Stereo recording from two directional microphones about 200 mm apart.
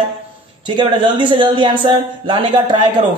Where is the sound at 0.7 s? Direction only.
25° right (ahead or behind).